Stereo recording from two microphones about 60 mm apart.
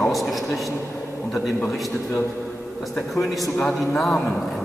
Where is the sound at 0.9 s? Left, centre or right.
Centre.